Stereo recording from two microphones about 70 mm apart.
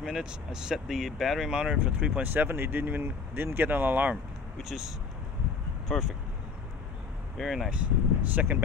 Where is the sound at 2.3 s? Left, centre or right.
Right.